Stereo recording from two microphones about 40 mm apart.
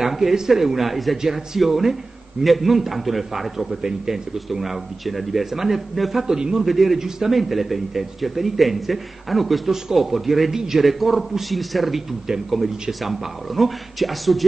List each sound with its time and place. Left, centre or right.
0.0 s a man's voice: centre
3.8 s speech: centre
4.5 s a man's voice: centre